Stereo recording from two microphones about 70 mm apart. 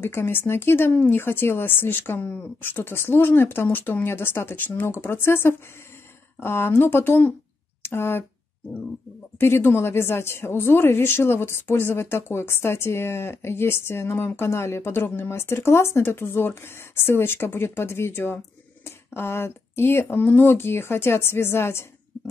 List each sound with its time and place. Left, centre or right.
0.0 s speech: left
9.4 s speech: left